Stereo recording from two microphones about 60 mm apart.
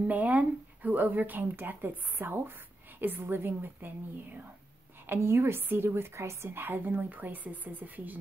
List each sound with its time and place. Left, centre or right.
0.0 s a woman's voice: right